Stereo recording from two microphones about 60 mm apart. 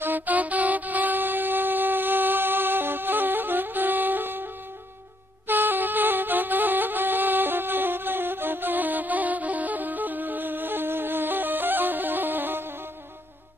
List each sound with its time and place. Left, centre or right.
0.0 s wind instrument: right
5.5 s music: right